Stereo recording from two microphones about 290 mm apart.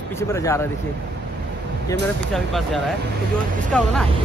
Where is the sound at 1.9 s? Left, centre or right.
Centre.